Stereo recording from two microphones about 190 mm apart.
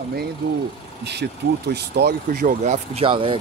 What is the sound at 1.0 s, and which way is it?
Speech, 60° right (ahead or behind).